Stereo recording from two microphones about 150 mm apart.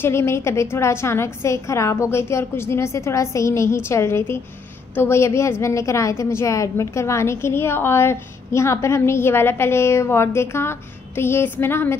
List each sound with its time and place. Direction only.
0.0 s a woman's voice: 15° left (ahead or behind)